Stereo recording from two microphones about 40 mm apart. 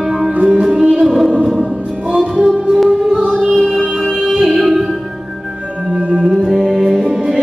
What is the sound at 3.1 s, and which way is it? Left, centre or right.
Music, right.